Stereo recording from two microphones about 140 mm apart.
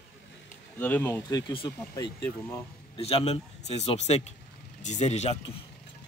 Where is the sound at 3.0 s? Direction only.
45° left (ahead or behind).